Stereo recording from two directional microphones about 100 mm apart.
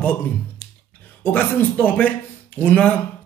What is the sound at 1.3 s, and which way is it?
Speech, 15° left (ahead or behind).